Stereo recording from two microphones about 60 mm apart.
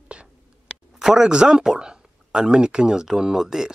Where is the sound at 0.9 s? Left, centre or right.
Centre.